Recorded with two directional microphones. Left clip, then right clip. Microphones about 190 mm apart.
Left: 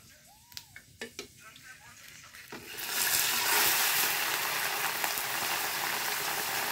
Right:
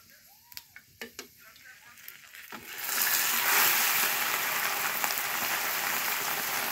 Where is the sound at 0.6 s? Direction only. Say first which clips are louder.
Even; 5° left (ahead or behind).